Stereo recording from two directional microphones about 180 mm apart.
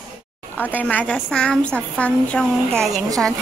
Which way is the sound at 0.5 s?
10° left (ahead or behind).